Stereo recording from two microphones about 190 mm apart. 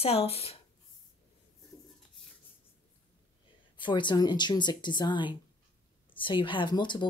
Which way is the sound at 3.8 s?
25° left (ahead or behind).